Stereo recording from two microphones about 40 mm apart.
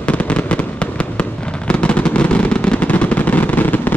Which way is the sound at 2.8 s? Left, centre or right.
Left.